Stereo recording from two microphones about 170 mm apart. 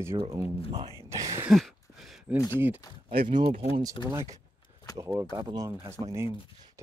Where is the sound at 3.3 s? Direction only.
30° right (ahead or behind).